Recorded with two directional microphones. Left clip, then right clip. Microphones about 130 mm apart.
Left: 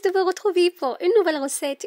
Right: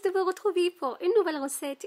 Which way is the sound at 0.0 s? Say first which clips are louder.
Left 6 dB; 25° left (ahead or behind).